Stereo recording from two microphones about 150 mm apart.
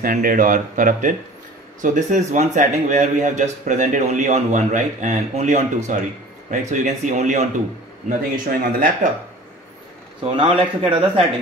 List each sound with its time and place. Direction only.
0.0 s speech: 70° right (ahead or behind); by 7.4 s 55° right (ahead or behind)
8.1 s speech: 70° right (ahead or behind)
10.2 s speech: 40° right (ahead or behind)